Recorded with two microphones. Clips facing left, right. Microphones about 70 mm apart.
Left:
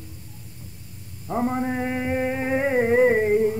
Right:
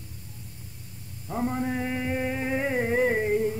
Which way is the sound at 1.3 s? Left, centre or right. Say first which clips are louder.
Left 4 dB; left.